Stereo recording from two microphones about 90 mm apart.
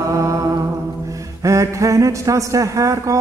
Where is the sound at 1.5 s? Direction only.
35° right (ahead or behind).